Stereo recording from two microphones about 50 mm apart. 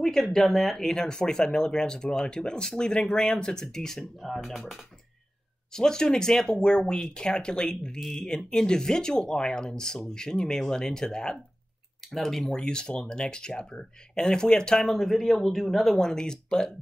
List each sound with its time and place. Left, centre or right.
0.0 s speech: centre
5.7 s speech: centre
14.9 s speech: centre